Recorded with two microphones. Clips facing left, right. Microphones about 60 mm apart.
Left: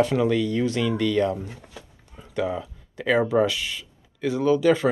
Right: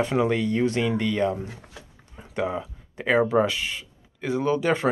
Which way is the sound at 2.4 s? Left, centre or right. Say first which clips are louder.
Right 2 dB; right.